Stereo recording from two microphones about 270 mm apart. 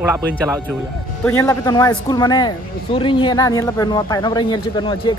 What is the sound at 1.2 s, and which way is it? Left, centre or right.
Speech, centre.